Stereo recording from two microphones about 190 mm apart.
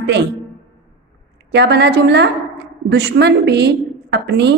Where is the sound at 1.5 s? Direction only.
60° right (ahead or behind).